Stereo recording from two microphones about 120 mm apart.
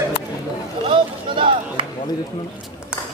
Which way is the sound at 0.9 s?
45° right (ahead or behind).